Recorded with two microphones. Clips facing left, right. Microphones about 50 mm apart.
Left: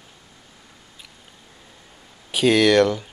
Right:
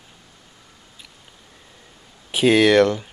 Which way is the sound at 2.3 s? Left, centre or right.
Centre.